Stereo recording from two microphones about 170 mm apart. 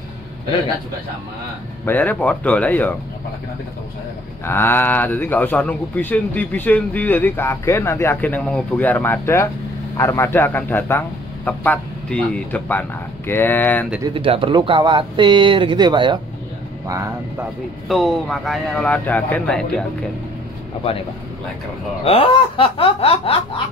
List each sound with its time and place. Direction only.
1.9 s speech: 10° left (ahead or behind)
4.5 s speech: 15° left (ahead or behind)
14.0 s speech: 30° right (ahead or behind)
17.8 s a man's voice: centre (ahead or behind)
22.0 s speech: 35° left (ahead or behind)